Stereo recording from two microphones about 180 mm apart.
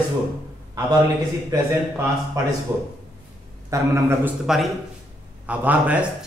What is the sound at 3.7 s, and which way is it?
Speech, 15° right (ahead or behind).